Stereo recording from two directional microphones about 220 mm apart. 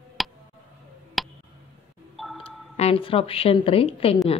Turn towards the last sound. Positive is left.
turn(degrees=25)  # may be behind; listen again after turning